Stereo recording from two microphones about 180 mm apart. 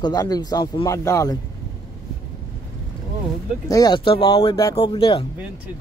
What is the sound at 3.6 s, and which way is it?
Speech, 20° left (ahead or behind).